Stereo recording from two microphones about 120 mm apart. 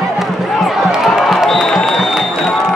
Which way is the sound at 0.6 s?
Centre (ahead or behind).